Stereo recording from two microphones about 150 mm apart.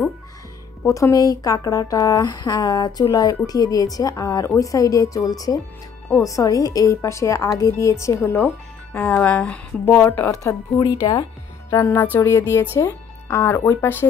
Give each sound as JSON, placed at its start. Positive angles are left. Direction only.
{"t": 0.8, "sound": "speech", "side_deg": 20}
{"t": 10.4, "sound": "speech", "side_deg": 25}
{"t": 11.7, "sound": "speech", "side_deg": 15}